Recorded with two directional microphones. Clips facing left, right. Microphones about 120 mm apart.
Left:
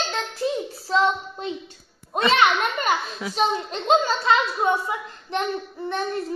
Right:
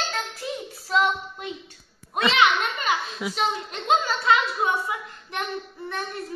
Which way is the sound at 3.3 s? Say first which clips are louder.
Left 5 dB; 30° left (ahead or behind).